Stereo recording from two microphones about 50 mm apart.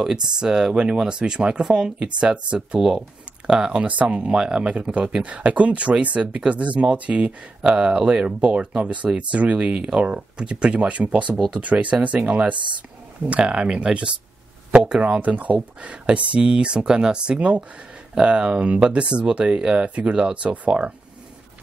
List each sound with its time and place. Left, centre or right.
0.0 s speech: centre